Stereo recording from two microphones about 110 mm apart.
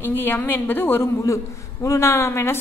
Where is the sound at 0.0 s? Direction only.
20° left (ahead or behind).